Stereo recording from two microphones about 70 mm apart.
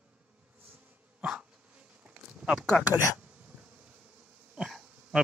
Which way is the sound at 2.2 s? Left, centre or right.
Centre.